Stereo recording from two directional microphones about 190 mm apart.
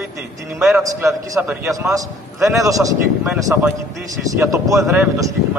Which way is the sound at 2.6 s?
15° right (ahead or behind).